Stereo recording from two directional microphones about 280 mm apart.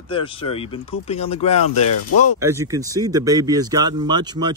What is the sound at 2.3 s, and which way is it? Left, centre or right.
Speech, centre.